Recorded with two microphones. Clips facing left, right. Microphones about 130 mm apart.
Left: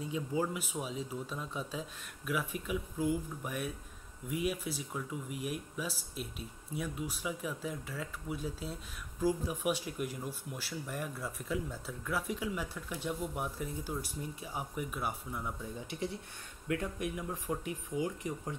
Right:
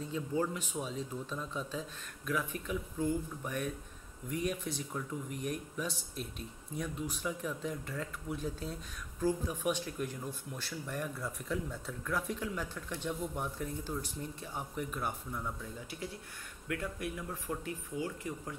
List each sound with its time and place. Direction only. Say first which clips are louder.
0.0 s speech: even; 10° left (ahead or behind)
15.6 s speech: left 4 dB; 25° left (ahead or behind)